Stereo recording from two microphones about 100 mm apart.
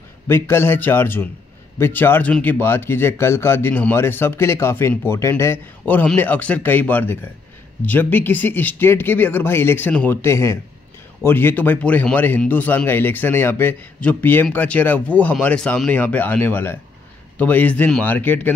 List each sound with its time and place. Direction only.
0.3 s speech: 25° left (ahead or behind)